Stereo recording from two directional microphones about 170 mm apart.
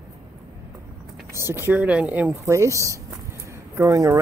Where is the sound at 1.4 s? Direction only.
15° right (ahead or behind).